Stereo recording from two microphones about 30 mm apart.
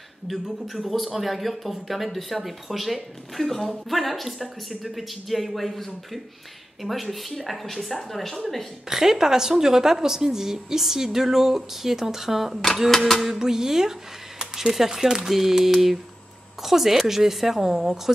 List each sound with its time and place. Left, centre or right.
0.3 s speech: centre
8.8 s a woman's voice: centre